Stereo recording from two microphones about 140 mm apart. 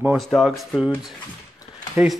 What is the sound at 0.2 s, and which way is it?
Speech, centre (ahead or behind).